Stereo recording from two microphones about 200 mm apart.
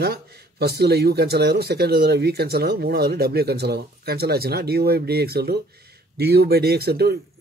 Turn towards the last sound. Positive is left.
turn(degrees=-55)  # may be behind; listen again after turning